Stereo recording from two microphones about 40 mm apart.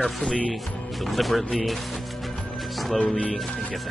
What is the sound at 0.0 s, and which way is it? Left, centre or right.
Speech, centre.